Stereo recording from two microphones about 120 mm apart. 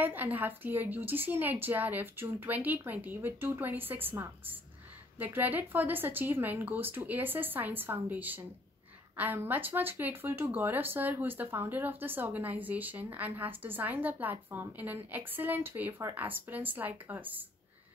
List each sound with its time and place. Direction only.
0.0 s speech: 15° right (ahead or behind)